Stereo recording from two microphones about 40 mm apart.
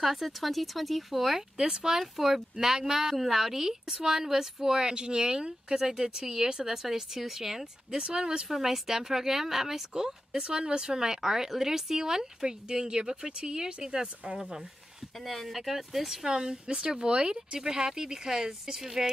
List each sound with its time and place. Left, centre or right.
0.0 s speech: centre
1.6 s speech: centre
8.5 s speech: centre; by 14.4 s right
14.4 s speech: centre
15.1 s speech: centre
16.3 s speech: centre